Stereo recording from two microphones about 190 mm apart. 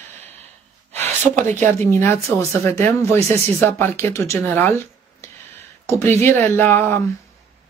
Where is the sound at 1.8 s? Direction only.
15° left (ahead or behind).